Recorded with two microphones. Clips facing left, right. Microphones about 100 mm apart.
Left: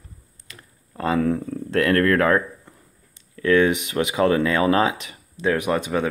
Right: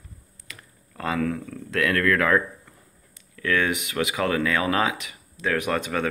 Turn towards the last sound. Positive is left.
turn(degrees=15)  # may be behind; listen again after turning